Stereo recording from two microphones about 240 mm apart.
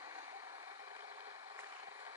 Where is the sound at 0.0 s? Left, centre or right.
Centre.